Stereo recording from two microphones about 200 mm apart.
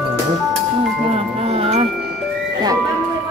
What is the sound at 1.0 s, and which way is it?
Music, 30° right (ahead or behind).